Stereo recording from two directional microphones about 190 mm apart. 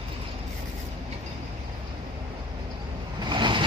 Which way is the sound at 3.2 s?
25° right (ahead or behind).